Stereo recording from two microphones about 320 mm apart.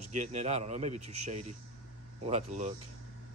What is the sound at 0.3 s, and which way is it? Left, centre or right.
A man's voice, right.